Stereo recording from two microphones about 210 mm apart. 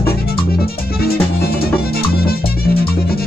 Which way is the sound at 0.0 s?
45° left (ahead or behind).